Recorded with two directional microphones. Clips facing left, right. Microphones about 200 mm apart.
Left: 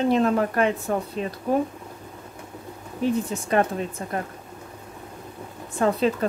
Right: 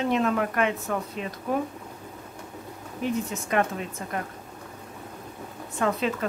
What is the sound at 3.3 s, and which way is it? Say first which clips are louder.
Speech: left 3 dB; 35° left (ahead or behind).